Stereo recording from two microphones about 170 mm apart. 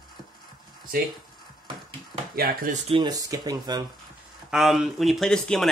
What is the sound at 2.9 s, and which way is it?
Speech, 25° right (ahead or behind).